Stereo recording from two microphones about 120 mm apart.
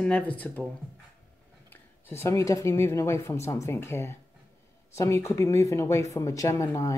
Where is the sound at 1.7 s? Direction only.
20° left (ahead or behind).